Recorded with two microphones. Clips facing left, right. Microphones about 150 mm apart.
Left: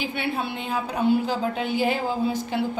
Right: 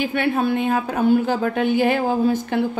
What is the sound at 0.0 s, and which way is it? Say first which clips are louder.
A woman's voice: right 7 dB; 50° right (ahead or behind).